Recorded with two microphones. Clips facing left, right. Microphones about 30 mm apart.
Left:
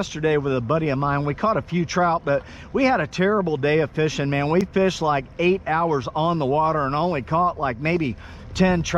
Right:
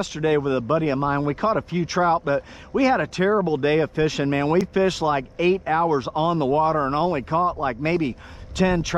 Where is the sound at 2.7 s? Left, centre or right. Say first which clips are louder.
Even; left.